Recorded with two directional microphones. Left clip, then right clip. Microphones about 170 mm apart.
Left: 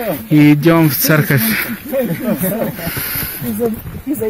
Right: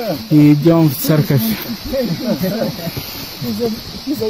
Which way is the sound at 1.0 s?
15° right (ahead or behind).